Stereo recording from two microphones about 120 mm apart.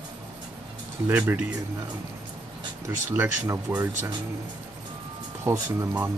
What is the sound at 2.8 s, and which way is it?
Speech, 15° right (ahead or behind).